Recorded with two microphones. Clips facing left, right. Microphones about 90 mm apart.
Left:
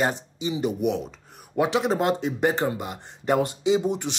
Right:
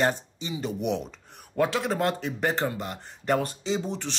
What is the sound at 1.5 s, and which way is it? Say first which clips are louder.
Speech: left 3 dB; 20° left (ahead or behind).